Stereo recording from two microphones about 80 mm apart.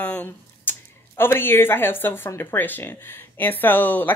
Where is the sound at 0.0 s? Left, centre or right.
Left.